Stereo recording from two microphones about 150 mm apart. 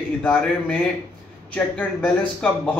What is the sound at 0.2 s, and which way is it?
Speech, 10° left (ahead or behind).